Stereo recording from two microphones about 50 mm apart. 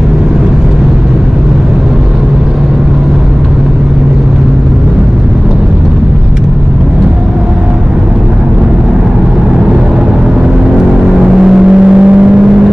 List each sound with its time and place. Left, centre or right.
11.4 s vehicle: centre